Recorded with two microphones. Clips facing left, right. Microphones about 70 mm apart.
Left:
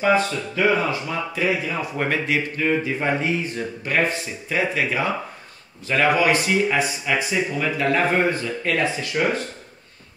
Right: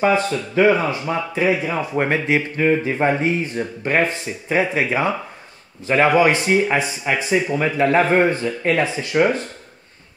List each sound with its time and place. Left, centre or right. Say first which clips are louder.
0.3 s speech: right 5 dB; right